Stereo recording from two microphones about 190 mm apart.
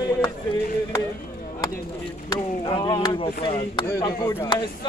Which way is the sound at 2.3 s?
20° left (ahead or behind).